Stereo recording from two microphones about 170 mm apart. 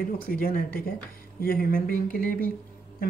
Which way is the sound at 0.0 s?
55° left (ahead or behind).